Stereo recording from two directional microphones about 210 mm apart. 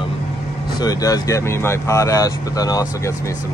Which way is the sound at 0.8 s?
15° left (ahead or behind).